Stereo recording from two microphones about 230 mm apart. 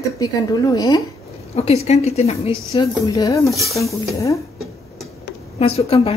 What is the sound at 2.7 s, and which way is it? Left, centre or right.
A woman's voice, centre.